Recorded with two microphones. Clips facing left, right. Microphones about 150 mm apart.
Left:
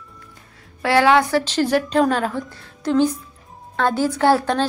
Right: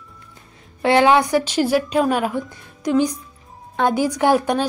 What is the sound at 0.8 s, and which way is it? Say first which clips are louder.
A woman's voice: right 1 dB; 20° right (ahead or behind).